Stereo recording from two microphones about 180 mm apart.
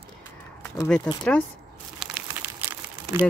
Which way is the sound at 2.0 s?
5° right (ahead or behind).